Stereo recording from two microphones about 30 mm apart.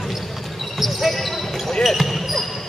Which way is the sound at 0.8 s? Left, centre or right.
Centre.